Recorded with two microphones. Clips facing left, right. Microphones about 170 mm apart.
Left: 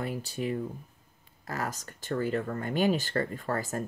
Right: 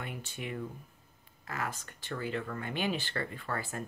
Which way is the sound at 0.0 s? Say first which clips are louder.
Left 8 dB; 35° left (ahead or behind).